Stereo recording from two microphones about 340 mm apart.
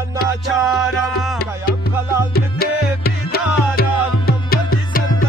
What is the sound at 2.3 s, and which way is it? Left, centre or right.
Music, left.